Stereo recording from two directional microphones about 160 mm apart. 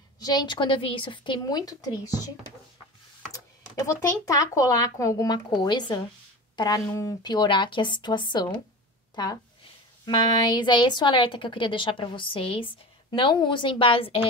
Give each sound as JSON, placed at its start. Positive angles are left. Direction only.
{"t": 0.2, "sound": "a woman's voice", "side_deg": 25}
{"t": 3.3, "sound": "a child's voice", "side_deg": 20}